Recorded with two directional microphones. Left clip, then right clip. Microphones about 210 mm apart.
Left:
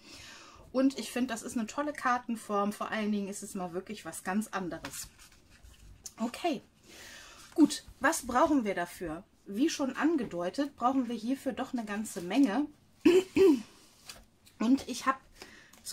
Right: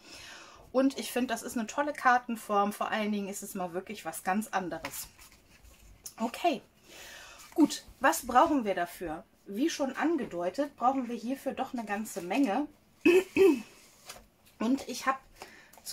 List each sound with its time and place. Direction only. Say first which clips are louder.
0.0 s speech: right 2 dB; centre (ahead or behind)
6.0 s a child's voice: right 4 dB; centre (ahead or behind)
14.6 s speech: left 2 dB; 10° left (ahead or behind)